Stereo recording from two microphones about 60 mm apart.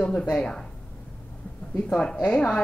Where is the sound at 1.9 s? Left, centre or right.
Centre.